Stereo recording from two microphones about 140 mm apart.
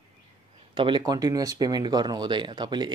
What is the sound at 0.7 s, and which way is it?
Speech, 35° right (ahead or behind).